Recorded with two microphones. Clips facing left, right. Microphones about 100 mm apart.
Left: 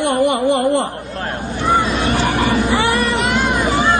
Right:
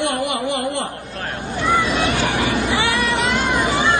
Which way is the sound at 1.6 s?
35° left (ahead or behind).